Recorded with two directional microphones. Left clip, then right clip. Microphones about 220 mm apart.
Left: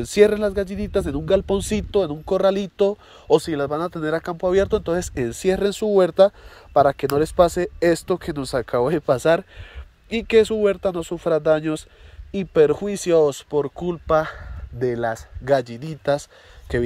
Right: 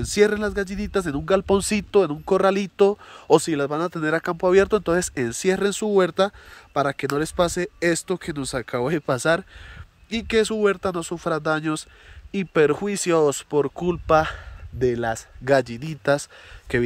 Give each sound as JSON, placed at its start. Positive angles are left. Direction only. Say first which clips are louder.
{"t": 0.0, "sound": "speech", "louder": "left 3 dB", "side_deg": 0}